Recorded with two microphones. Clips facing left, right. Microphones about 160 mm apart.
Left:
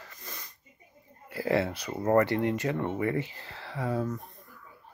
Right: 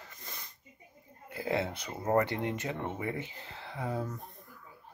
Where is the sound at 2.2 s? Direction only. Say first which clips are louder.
Left 6 dB; 20° right (ahead or behind).